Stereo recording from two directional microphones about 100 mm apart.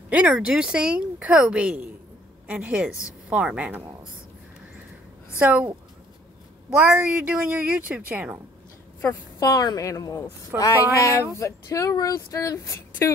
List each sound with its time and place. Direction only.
0.1 s speech: 10° right (ahead or behind)
5.4 s speech: 15° right (ahead or behind)
7.0 s speech: 15° right (ahead or behind)
9.4 s speech: 40° left (ahead or behind)